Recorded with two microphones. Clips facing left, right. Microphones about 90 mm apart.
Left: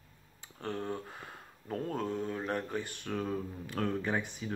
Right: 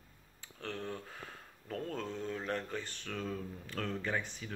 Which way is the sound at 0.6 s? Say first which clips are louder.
Left 4 dB; 15° left (ahead or behind).